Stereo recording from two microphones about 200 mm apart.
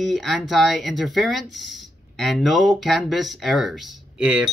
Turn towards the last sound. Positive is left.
turn(degrees=-5)  # may be behind; listen again after turning